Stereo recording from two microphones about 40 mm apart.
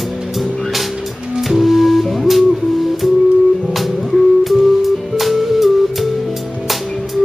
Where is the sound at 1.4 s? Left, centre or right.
Centre.